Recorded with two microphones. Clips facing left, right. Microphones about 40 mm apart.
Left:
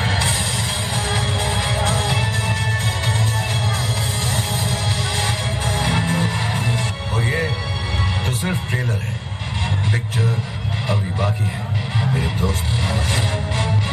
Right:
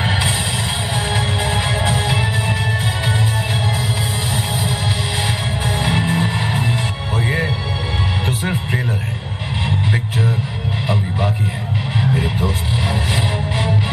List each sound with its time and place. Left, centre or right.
0.0 s music: centre
5.2 s music: centre
12.0 s music: centre